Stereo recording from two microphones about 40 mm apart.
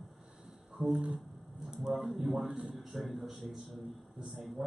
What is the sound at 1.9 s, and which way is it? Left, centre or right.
A man's voice, centre.